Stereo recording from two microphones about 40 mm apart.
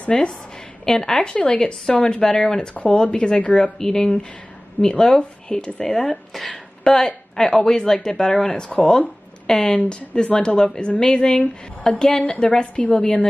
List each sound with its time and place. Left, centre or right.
0.1 s speech: centre; by 3.7 s left
3.7 s a woman's voice: centre